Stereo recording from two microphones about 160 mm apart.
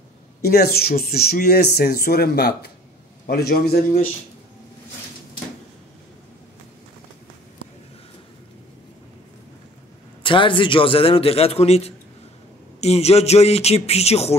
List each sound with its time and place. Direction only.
0.4 s speech: 80° left
3.3 s speech: 70° left (ahead or behind)
10.2 s a man's voice: 30° left (ahead or behind)